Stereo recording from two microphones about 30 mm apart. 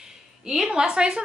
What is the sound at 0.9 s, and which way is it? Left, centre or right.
Speech, right.